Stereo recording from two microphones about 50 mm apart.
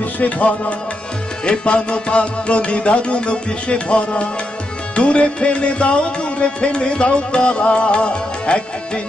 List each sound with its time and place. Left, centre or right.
0.0 s music: left